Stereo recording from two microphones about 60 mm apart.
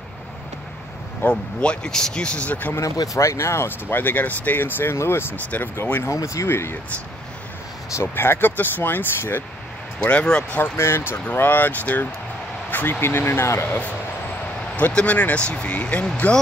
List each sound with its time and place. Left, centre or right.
1.2 s speech: left
1.6 s speech: centre
2.8 s speech: left
3.9 s speech: left
6.0 s speech: left
7.9 s speech: left
10.0 s speech: centre
10.6 s speech: left
11.2 s speech: left
13.0 s speech: left
14.9 s speech: left